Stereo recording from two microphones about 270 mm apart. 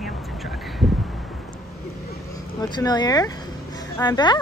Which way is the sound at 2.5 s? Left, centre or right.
Centre.